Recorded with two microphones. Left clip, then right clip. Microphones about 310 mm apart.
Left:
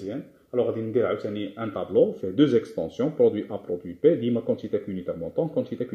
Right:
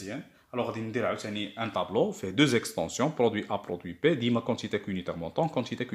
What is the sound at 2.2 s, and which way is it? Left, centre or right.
Speech, right.